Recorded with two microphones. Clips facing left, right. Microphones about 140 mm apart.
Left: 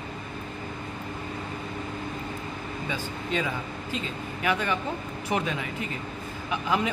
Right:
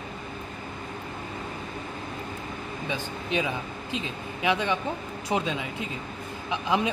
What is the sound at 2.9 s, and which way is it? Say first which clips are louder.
Speech: right 1 dB; 15° right (ahead or behind).